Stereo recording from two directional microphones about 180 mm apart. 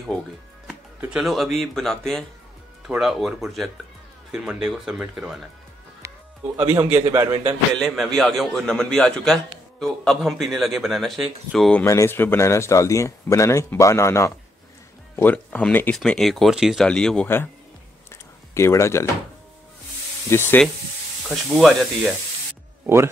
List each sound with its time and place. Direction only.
0.7 s a man's voice: 5° right (ahead or behind)
6.0 s music: 15° right (ahead or behind)
6.7 s a man's voice: 10° right (ahead or behind)
7.8 s a man's voice: centre (ahead or behind)
11.8 s a man's voice: 15° left (ahead or behind)
18.1 s a sound: 15° left (ahead or behind)
20.2 s a man's voice: 10° left (ahead or behind)
21.2 s a man's voice: centre (ahead or behind)